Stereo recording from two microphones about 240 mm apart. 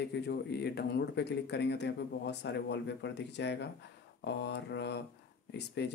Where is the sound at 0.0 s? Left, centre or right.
Left.